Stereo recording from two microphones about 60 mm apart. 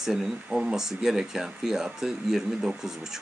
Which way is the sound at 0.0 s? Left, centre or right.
Centre.